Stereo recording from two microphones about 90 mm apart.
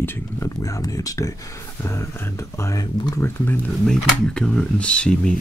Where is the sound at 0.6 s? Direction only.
40° left (ahead or behind).